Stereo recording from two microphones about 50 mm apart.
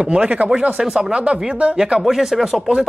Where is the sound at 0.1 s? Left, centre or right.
Right.